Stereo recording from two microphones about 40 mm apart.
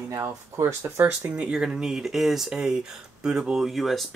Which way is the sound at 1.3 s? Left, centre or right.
Right.